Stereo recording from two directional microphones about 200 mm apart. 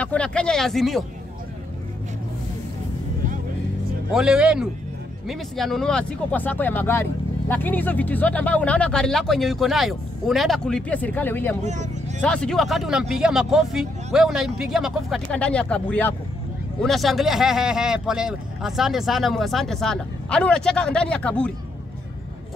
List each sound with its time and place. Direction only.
0.0 s speech: 5° left (ahead or behind)
4.1 s speech: 5° right (ahead or behind)
11.6 s speech: 35° right (ahead or behind)
12.2 s speech: 5° left (ahead or behind)